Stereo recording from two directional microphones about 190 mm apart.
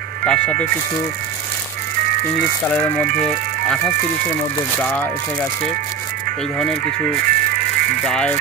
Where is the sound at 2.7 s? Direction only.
10° left (ahead or behind).